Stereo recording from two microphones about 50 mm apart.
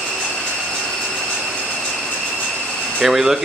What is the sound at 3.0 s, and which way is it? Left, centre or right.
Speech, centre.